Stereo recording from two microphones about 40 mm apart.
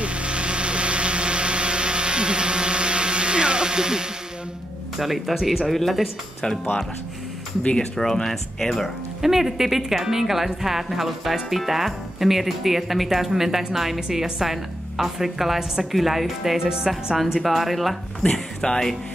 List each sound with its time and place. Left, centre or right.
0.0 s vehicle: right
4.9 s speech: centre
7.7 s speech: centre
8.8 s a woman's voice: centre
16.9 s speech: centre
18.2 s speech: centre